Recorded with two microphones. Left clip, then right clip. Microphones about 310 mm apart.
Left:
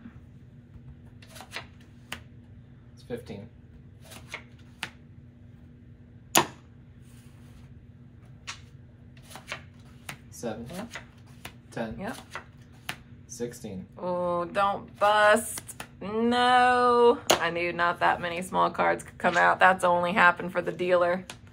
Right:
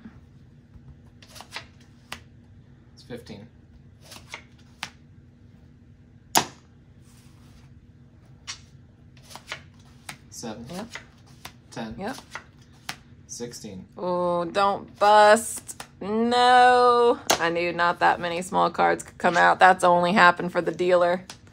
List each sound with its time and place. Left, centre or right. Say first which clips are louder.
2.1 s finger snapping: right 1 dB; centre
3.1 s speech: left 3 dB; centre
4.8 s finger snapping: right 1 dB; centre
10.0 s a sound: left 1 dB; centre
13.4 s speech: left 1 dB; centre
13.9 s speech: right 4 dB; right